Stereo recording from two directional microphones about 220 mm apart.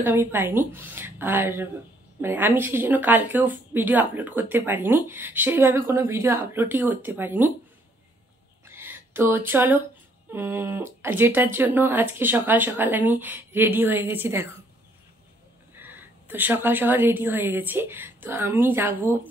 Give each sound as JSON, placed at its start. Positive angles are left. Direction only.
{"t": 0.0, "sound": "speech", "side_deg": -10}
{"t": 8.6, "sound": "a sound", "side_deg": -10}
{"t": 10.3, "sound": "speech", "side_deg": -10}
{"t": 15.7, "sound": "a woman's voice", "side_deg": -10}